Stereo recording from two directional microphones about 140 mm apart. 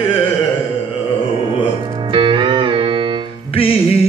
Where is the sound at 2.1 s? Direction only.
35° right (ahead or behind).